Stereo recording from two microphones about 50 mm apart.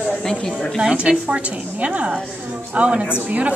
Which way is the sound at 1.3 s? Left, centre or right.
Right.